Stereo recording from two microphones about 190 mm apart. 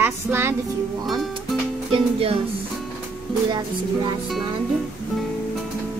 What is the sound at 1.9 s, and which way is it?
Speech, 30° right (ahead or behind).